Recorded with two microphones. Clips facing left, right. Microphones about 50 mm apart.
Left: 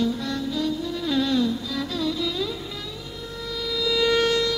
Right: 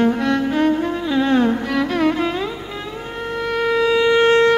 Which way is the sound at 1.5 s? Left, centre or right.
Right.